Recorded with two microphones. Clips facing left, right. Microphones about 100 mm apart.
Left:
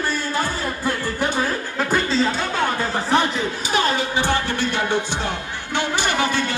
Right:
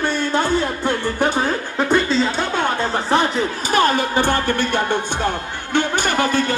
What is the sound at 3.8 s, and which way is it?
Music, 50° right (ahead or behind).